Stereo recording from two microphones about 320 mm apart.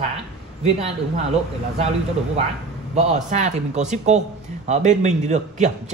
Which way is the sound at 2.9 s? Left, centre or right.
Right.